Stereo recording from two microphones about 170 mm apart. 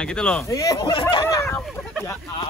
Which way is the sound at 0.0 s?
5° left (ahead or behind).